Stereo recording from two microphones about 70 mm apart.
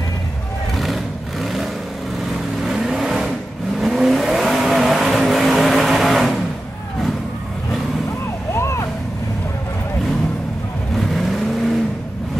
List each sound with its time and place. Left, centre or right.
0.7 s vehicle: centre
8.5 s vehicle: left
11.0 s vehicle: centre